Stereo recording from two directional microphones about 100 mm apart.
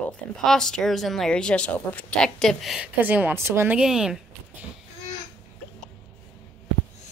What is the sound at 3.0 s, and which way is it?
Speech, 15° right (ahead or behind).